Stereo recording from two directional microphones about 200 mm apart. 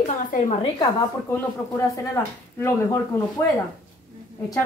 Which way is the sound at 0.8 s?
15° left (ahead or behind).